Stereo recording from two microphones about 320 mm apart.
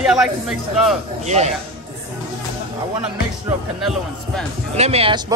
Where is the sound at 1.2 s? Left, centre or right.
Right.